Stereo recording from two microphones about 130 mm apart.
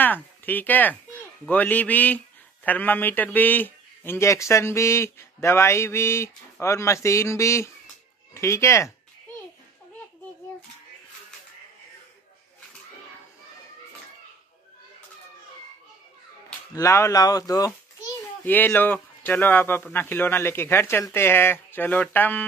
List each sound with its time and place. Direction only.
0.0 s speech: 15° left (ahead or behind)
16.7 s speech: 25° left (ahead or behind)
18.4 s speech: 15° left (ahead or behind)